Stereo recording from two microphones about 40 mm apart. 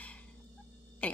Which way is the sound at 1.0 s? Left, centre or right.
Left.